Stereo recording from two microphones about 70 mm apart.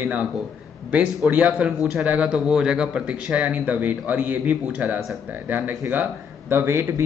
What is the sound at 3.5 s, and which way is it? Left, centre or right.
Speech, right.